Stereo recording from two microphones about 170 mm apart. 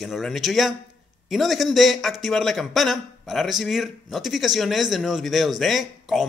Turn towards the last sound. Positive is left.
turn(degrees=0)  # may be behind; listen again after turning